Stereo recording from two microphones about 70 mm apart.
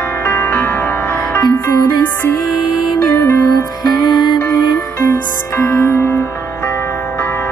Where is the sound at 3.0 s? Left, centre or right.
Left.